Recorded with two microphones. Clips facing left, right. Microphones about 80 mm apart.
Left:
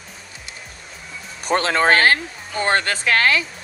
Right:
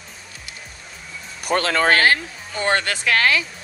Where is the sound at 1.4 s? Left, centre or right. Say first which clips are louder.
Left 1 dB; left.